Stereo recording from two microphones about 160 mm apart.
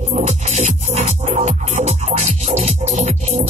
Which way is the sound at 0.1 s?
45° right (ahead or behind).